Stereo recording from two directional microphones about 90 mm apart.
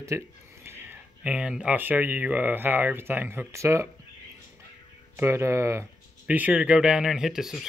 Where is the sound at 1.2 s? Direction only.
10° right (ahead or behind).